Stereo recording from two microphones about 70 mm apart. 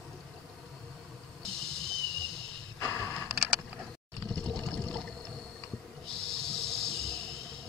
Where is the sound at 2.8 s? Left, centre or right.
Left.